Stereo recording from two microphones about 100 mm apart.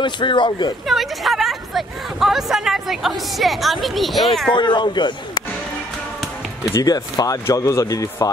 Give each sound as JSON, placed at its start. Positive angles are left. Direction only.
{"t": 0.0, "sound": "a man's voice", "side_deg": 50}
{"t": 0.8, "sound": "speech", "side_deg": 0}
{"t": 4.6, "sound": "a man's voice", "side_deg": 50}
{"t": 6.7, "sound": "a man's voice", "side_deg": 40}